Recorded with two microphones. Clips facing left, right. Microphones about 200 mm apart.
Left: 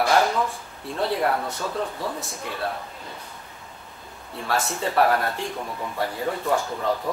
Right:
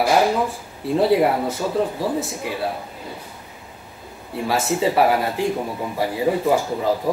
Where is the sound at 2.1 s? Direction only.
5° right (ahead or behind).